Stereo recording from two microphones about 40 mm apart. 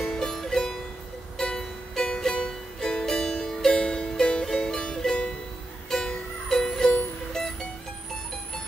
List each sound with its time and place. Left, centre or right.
0.0 s music: centre